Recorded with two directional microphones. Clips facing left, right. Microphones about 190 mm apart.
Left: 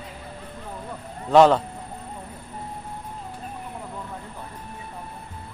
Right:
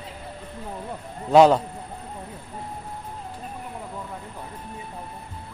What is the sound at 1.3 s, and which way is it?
Speech, 10° right (ahead or behind).